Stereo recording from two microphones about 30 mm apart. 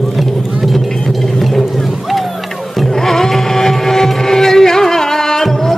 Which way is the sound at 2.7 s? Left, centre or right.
Centre.